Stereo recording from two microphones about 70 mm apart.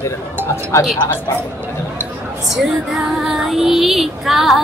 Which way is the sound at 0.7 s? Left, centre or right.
Left.